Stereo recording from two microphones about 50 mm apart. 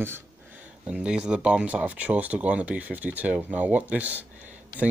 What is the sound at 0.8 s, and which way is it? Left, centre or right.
Speech, right.